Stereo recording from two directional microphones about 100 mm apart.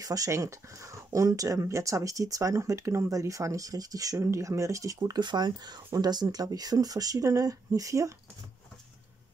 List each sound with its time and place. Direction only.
0.0 s speech: 35° right (ahead or behind)